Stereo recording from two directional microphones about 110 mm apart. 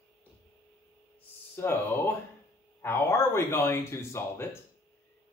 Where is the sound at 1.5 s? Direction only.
20° left (ahead or behind).